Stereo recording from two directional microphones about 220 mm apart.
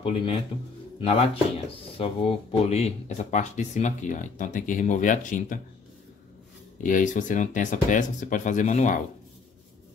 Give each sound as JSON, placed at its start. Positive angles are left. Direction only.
{"t": 0.0, "sound": "speech", "side_deg": 25}
{"t": 6.8, "sound": "speech", "side_deg": 35}